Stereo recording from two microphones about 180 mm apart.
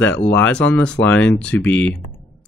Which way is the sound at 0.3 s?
10° left (ahead or behind).